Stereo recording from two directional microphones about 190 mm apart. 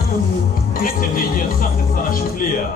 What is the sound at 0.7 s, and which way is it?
Music, 50° left (ahead or behind).